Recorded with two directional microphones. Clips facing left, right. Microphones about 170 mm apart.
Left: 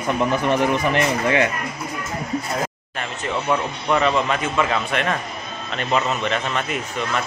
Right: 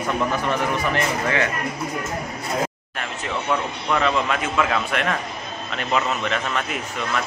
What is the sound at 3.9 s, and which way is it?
A man's voice, centre (ahead or behind).